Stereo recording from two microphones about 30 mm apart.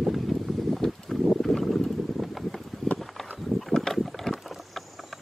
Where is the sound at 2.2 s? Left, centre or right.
Centre.